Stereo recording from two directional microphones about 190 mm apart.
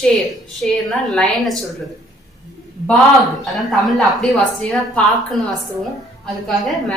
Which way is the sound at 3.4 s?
Centre (ahead or behind).